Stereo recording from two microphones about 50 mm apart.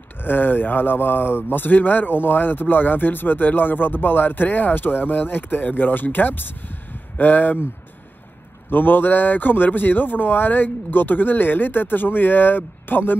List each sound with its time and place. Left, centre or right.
0.2 s speech: left
8.6 s speech: left